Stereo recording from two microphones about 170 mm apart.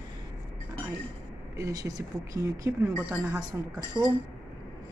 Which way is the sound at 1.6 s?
20° right (ahead or behind).